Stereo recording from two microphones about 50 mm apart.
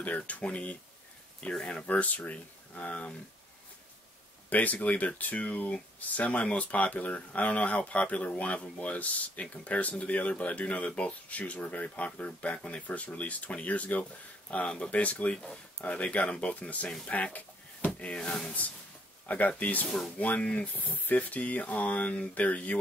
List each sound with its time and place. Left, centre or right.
0.0 s speech: left
1.9 s speech: left
4.5 s speech: left
19.2 s speech: left